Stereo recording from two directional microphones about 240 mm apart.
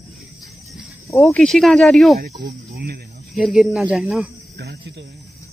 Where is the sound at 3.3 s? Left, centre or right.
Centre.